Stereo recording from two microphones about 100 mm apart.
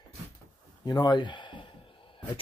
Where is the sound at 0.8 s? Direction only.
40° left (ahead or behind); by 2.4 s 60° left (ahead or behind).